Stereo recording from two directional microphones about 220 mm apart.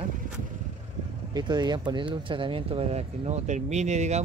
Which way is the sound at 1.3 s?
20° right (ahead or behind).